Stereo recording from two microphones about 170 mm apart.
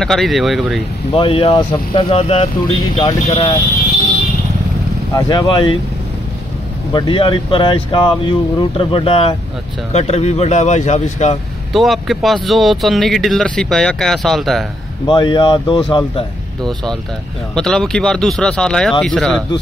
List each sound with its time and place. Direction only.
0.0 s speech: centre (ahead or behind)
1.1 s speech: 30° left (ahead or behind)
5.1 s speech: 25° left (ahead or behind)
6.9 s speech: 30° left (ahead or behind)
11.7 s speech: centre (ahead or behind)
15.0 s speech: 30° left (ahead or behind)
17.6 s speech: 5° left (ahead or behind)